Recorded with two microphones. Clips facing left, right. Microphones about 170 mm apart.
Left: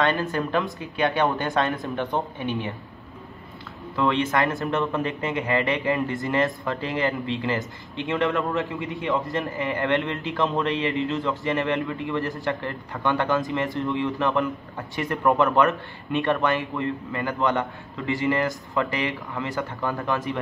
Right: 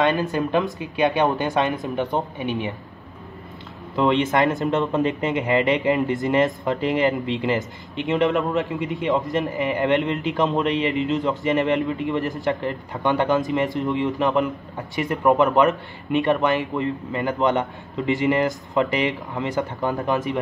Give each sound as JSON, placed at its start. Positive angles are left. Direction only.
{"t": 0.0, "sound": "speech", "side_deg": -15}
{"t": 3.9, "sound": "speech", "side_deg": -20}